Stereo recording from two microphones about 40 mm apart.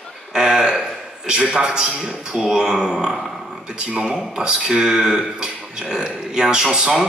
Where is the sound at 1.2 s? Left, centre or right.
Right.